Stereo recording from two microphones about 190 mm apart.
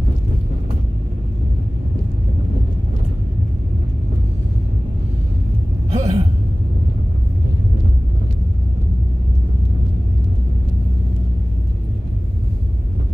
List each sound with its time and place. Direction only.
5.9 s gasp: 35° right (ahead or behind)